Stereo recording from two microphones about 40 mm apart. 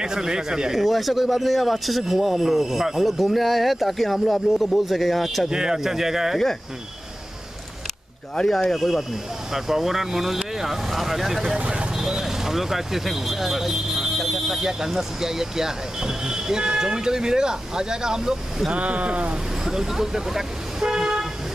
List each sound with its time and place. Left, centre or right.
0.0 s speech: centre
0.7 s speech: centre
5.5 s speech: centre
8.5 s speech: centre
9.5 s speech: centre
11.5 s vehicle: right
12.0 s speech: centre
18.7 s speech: right
19.6 s speech: centre
20.8 s car: centre